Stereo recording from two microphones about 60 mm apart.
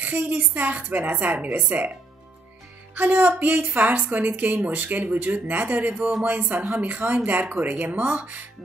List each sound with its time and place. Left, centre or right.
0.0 s a woman's voice: right
2.9 s a woman's voice: right